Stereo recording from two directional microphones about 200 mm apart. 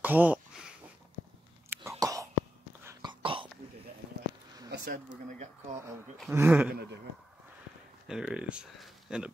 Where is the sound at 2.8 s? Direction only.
25° right (ahead or behind).